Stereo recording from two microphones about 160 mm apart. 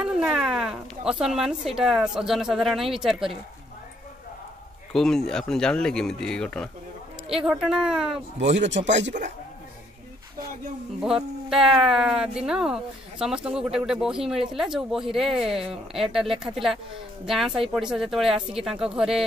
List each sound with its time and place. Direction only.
0.0 s cat: 5° right (ahead or behind)
1.8 s speech: 5° right (ahead or behind)
4.9 s speech: centre (ahead or behind)
8.5 s speech: 45° right (ahead or behind)
8.8 s speech: 90° right
11.0 s speech: 5° right (ahead or behind)